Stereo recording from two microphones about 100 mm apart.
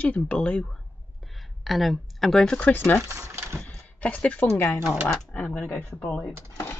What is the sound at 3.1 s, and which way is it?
Speech, 30° right (ahead or behind).